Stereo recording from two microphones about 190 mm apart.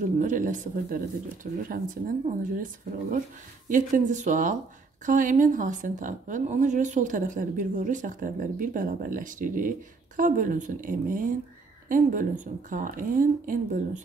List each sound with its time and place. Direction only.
0.0 s a woman's voice: 40° right (ahead or behind)